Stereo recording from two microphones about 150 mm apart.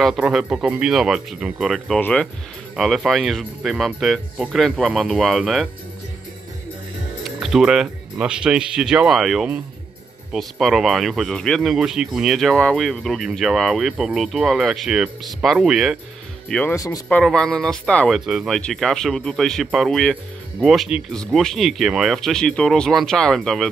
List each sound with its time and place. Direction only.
0.0 s speech: centre (ahead or behind)
2.0 s speech: 10° left (ahead or behind)
2.7 s speech: centre (ahead or behind)
7.2 s speech: centre (ahead or behind)
16.7 s speech: 20° left (ahead or behind)
17.1 s speech: 5° left (ahead or behind)